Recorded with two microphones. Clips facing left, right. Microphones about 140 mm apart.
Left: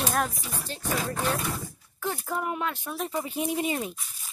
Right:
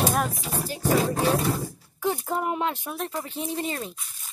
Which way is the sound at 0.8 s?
35° right (ahead or behind).